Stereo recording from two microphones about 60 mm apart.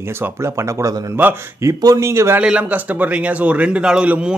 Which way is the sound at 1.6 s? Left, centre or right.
Right.